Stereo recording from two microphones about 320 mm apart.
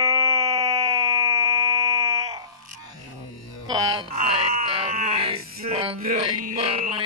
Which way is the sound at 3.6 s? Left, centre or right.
Centre.